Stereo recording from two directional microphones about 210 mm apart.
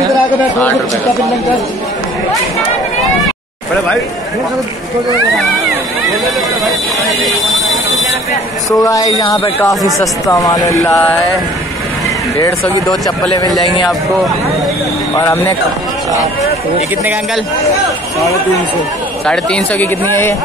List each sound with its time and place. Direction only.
8.6 s speech: 15° left (ahead or behind)
12.9 s speech: centre (ahead or behind)
15.1 s speech: 15° left (ahead or behind)
19.2 s speech: 5° left (ahead or behind)